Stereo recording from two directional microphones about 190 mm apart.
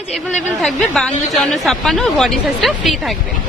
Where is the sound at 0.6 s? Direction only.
Centre (ahead or behind).